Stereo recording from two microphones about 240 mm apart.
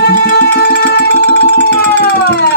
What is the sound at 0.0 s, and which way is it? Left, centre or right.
Music, left.